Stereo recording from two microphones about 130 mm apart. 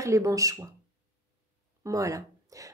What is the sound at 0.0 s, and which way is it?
Speech, 25° right (ahead or behind).